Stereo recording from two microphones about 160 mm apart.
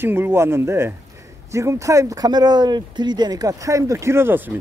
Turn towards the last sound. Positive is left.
turn(degrees=-10)  # may be behind; listen again after turning